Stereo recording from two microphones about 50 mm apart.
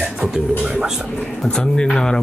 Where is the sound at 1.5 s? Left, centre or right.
Centre.